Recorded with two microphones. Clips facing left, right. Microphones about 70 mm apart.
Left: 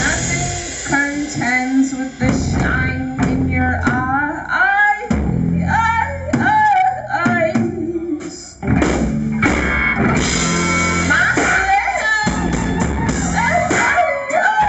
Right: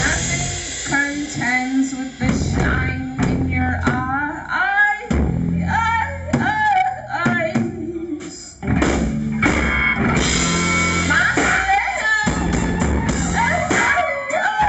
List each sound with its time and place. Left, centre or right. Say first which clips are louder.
0.9 s music: left 3 dB; centre
8.7 s music: left 2 dB; centre